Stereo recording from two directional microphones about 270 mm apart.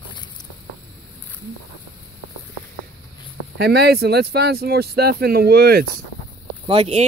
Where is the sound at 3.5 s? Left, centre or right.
Right.